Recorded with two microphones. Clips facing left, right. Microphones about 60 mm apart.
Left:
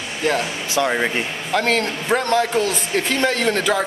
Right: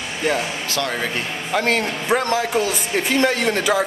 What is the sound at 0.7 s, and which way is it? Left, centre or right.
Speech, left.